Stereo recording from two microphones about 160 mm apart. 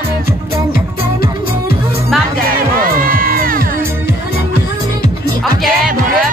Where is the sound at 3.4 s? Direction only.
60° right (ahead or behind).